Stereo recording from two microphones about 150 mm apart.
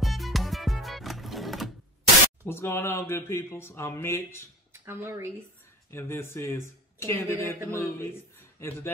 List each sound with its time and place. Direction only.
0.0 s music: centre (ahead or behind)
2.4 s speech: 15° left (ahead or behind)
4.8 s speech: 15° right (ahead or behind)
5.9 s a man's voice: 15° left (ahead or behind)